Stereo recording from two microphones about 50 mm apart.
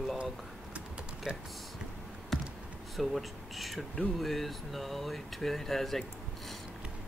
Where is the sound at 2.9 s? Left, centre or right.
Centre.